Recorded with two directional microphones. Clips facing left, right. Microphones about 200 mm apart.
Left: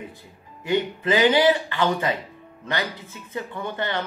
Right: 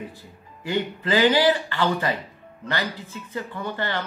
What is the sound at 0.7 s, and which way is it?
A man's voice, 20° left (ahead or behind).